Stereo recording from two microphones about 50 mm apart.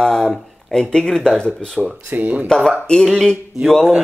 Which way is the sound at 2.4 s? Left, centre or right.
Centre.